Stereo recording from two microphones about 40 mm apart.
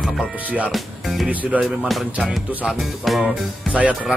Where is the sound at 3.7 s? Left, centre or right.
Right.